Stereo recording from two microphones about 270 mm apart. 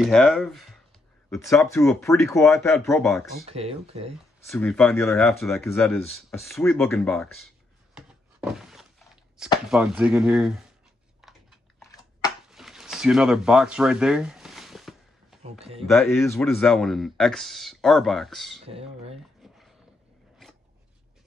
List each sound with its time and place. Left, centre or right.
0.0 s speech: centre
1.3 s speech: centre
3.4 s speech: right
4.5 s speech: centre
7.9 s thunk: centre
9.7 s speech: centre
11.2 s chewing: centre
12.4 s a sound: centre
15.8 s speech: centre
18.7 s speech: right
19.4 s a sound: centre